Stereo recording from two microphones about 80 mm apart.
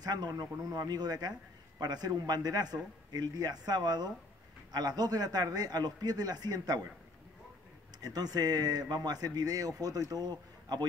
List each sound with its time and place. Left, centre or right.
0.0 s speech: right
8.0 s speech: right